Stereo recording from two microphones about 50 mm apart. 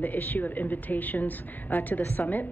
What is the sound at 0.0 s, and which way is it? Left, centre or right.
A woman's voice, left.